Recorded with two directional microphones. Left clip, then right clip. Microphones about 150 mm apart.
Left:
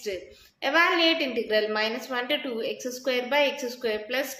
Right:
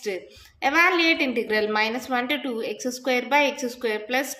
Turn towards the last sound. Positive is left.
turn(degrees=-45)  # may be behind; listen again after turning